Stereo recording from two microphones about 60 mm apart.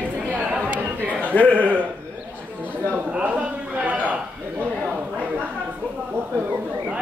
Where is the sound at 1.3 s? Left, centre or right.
Left.